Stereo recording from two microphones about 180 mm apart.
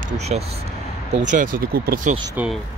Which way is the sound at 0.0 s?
35° right (ahead or behind).